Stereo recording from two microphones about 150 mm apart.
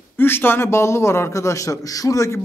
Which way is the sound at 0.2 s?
15° left (ahead or behind).